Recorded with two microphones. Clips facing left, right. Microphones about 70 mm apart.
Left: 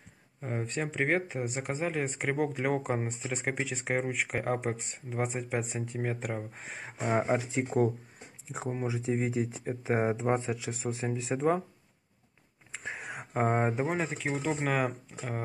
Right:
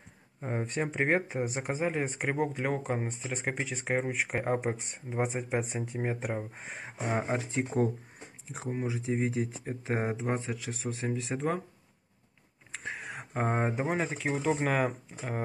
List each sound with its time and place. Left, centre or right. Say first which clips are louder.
0.4 s speech: right 1 dB; centre
1.6 s speech: even; centre
7.1 s speech: left 3 dB; centre
10.4 s speech: left 2 dB; centre
12.8 s speech: even; centre